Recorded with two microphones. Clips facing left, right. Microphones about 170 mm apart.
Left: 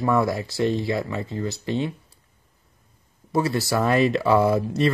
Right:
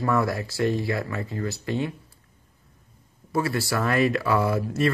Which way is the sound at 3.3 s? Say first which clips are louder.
Left 3 dB; 20° left (ahead or behind).